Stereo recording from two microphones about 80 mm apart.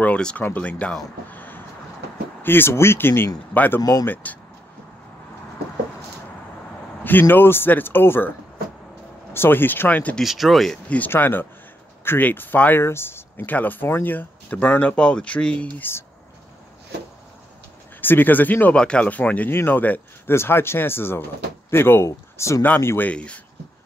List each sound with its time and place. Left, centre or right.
0.0 s speech: centre
1.3 s vehicle: left
2.4 s speech: left
7.0 s speech: left
9.3 s speech: left
10.2 s speech: centre
11.1 s speech: left
18.0 s speech: left
18.8 s speech: centre; by 23.0 s left
23.0 s speech: centre